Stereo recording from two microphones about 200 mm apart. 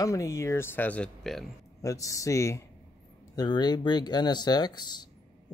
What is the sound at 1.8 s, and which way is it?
A man's voice, 15° left (ahead or behind).